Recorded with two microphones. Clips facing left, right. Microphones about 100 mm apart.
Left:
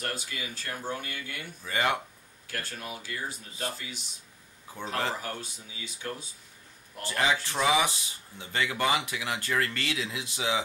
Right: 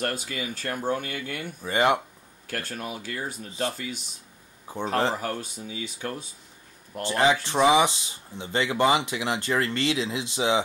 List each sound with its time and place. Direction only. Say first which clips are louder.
0.0 s speech: right 6 dB; 55° right (ahead or behind)
1.6 s speech: right 6 dB; 25° right (ahead or behind)
2.4 s speech: right 5 dB; 50° right (ahead or behind)
4.7 s speech: right 8 dB; 30° right (ahead or behind)
5.2 s speech: right 6 dB; 50° right (ahead or behind)
7.0 s speech: right 6 dB; 25° right (ahead or behind)